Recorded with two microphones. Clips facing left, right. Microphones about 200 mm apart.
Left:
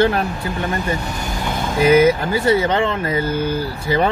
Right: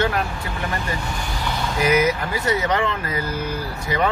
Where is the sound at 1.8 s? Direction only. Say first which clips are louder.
Left 7 dB; 30° left (ahead or behind).